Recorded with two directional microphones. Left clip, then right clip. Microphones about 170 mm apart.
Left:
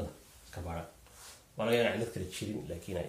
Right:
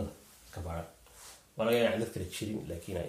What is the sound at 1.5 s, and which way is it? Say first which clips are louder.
Speech: right 1 dB; 15° right (ahead or behind).